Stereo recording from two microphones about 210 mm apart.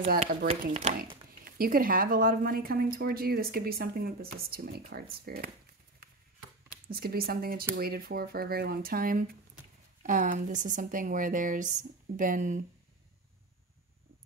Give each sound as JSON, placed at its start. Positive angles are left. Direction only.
{"t": 0.1, "sound": "speech", "side_deg": -45}
{"t": 6.0, "sound": "chop", "side_deg": -45}
{"t": 6.9, "sound": "a woman's voice", "side_deg": -45}